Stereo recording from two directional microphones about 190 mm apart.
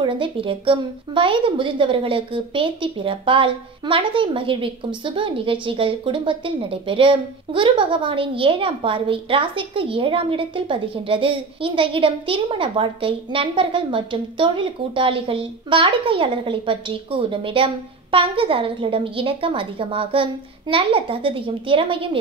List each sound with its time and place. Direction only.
0.0 s a woman's voice: 25° right (ahead or behind)